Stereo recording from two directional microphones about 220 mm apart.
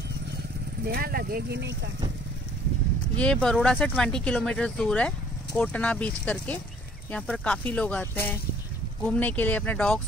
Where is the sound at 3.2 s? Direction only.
5° left (ahead or behind).